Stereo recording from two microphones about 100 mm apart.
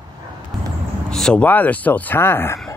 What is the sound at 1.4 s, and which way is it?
Speech, 15° left (ahead or behind).